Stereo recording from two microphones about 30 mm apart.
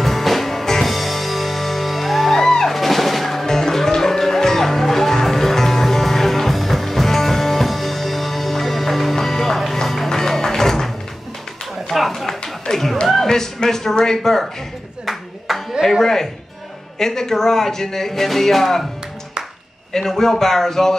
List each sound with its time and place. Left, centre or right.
0.0 s music: centre
3.4 s music: centre
12.7 s music: left
13.3 s a sound: centre
13.9 s speech: centre
15.0 s a sound: centre
16.0 s speech: centre
19.9 s speech: centre